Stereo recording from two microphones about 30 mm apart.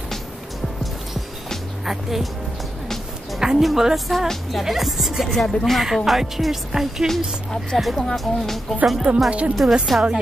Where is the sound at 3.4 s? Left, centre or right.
Centre.